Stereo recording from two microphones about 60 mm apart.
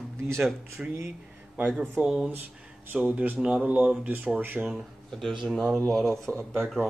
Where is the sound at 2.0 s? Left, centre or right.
Right.